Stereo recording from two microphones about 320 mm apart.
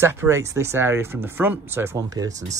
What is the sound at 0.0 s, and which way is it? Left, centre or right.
Speech, centre.